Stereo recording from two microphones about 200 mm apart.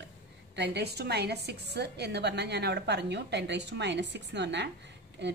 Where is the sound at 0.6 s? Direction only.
55° right (ahead or behind).